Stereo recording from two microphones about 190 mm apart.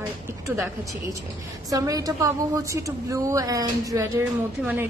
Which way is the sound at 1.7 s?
20° right (ahead or behind).